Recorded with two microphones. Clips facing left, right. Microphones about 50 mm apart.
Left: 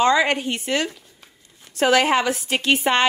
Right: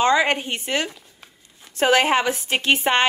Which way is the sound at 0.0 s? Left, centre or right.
Right.